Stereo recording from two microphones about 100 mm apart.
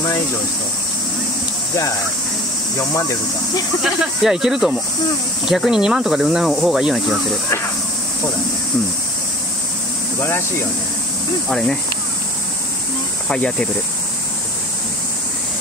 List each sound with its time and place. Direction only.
2.9 s speech: 35° left (ahead or behind)
3.8 s speech: 5° right (ahead or behind)
11.4 s speech: 5° left (ahead or behind)
13.3 s speech: 10° left (ahead or behind)